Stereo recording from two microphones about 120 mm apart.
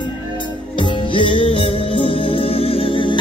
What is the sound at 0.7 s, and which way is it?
Music, 45° left (ahead or behind).